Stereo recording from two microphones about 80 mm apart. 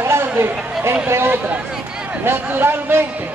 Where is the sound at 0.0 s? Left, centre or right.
Right.